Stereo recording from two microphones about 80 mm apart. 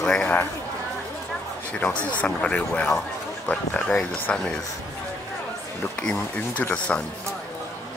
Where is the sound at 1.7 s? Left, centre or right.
Centre.